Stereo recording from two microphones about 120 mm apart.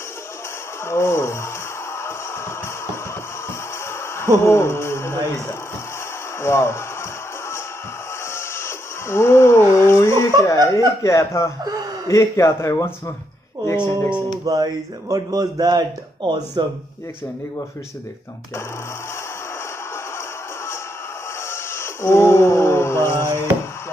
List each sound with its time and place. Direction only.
0.8 s speech: 20° left (ahead or behind)
4.4 s speech: 20° left (ahead or behind)
8.3 s a sound: 20° left (ahead or behind)
11.0 s speech: 25° left (ahead or behind)
14.4 s speech: 30° right (ahead or behind)
21.5 s a sound: 20° left (ahead or behind)